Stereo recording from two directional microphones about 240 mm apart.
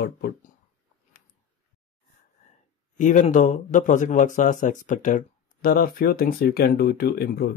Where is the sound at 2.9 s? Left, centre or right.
Left.